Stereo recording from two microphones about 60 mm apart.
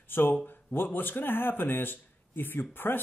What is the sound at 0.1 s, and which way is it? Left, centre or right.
Speech, left.